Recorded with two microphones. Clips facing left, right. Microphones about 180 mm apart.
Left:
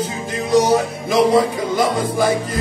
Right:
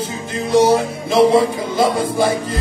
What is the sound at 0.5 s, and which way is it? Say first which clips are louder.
Music: right 2 dB; 30° right (ahead or behind).